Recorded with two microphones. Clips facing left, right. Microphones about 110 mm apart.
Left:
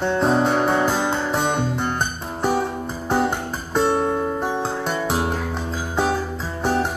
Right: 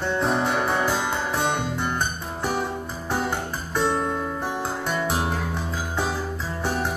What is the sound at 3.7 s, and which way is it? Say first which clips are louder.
Music: left 5 dB; 20° left (ahead or behind).